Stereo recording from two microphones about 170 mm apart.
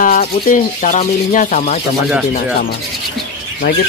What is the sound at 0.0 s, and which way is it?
Speech, 50° left (ahead or behind).